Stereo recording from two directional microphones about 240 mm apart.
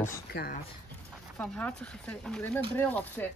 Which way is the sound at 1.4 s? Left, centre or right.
Centre.